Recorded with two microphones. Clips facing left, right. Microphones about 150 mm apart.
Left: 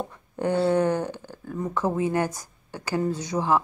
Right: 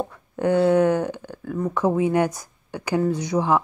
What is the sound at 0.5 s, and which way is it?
Speech, 10° right (ahead or behind).